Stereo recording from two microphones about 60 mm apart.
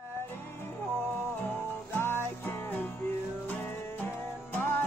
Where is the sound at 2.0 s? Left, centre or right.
Left.